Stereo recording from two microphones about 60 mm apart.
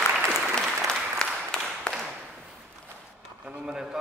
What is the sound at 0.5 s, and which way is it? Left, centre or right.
Applause, centre.